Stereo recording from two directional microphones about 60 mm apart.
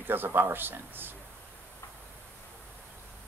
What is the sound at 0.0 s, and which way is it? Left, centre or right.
Speech, right.